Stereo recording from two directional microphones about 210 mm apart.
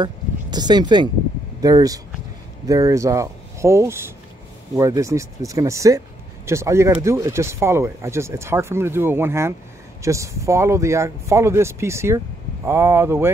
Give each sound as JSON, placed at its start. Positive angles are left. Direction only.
{"t": 0.0, "sound": "speech", "side_deg": -20}